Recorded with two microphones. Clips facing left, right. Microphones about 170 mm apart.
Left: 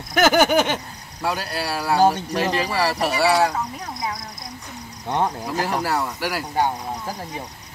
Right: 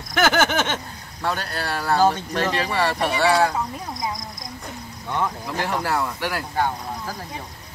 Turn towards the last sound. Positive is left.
turn(degrees=15)  # may be behind; listen again after turning